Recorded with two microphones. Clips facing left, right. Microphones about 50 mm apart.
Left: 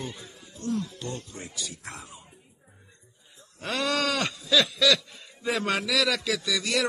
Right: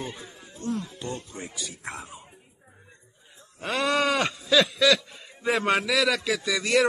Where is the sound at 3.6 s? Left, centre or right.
Centre.